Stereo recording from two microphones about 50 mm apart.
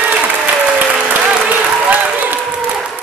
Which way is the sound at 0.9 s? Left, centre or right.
Right.